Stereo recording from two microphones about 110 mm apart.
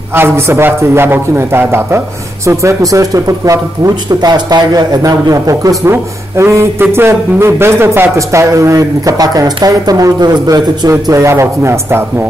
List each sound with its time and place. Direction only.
0.1 s speech: 20° right (ahead or behind)